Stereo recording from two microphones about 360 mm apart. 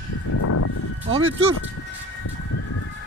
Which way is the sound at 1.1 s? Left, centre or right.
Centre.